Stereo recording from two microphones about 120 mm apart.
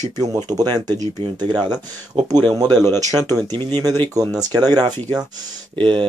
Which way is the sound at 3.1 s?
30° right (ahead or behind).